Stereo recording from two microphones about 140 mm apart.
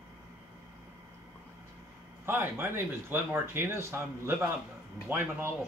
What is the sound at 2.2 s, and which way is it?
Speech, 15° right (ahead or behind).